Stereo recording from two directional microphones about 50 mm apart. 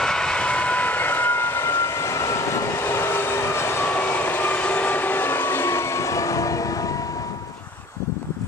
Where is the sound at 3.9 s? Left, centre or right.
Left.